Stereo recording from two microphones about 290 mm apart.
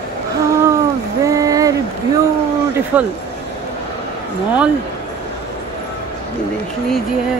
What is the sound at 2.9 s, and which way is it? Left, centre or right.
Speech, centre.